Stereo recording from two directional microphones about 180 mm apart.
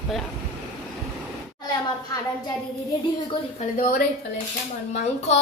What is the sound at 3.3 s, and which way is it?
Speech, 40° left (ahead or behind).